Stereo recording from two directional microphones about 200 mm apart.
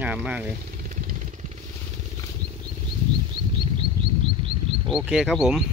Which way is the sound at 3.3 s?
25° right (ahead or behind).